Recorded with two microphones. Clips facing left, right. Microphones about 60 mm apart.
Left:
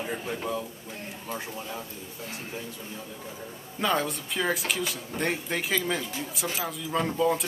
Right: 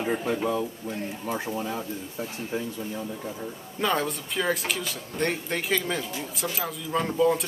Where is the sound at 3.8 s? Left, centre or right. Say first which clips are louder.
Right 1 dB; centre.